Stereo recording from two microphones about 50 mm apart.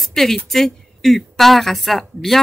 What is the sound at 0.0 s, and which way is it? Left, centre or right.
A woman's voice, centre.